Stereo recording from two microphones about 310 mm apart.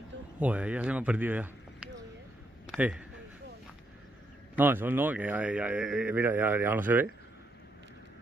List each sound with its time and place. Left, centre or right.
0.4 s speech: centre
2.6 s a sound: centre
4.6 s a man's voice: centre